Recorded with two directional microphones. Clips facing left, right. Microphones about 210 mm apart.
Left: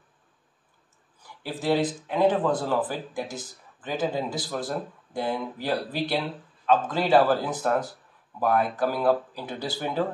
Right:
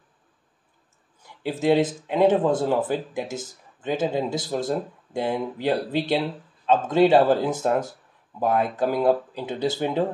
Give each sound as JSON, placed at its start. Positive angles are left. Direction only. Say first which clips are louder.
{"t": 1.2, "sound": "a man's voice", "louder": "right 6 dB", "side_deg": -20}